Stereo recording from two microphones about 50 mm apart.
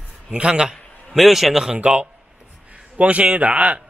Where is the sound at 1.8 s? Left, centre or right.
Right.